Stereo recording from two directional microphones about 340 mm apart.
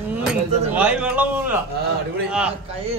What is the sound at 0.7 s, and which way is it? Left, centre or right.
A man's voice, centre.